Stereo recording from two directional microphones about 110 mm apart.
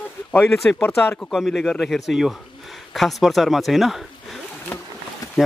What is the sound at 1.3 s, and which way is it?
Speech, centre (ahead or behind).